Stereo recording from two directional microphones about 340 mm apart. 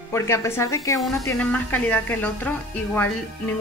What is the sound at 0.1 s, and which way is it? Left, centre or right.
Speech, centre.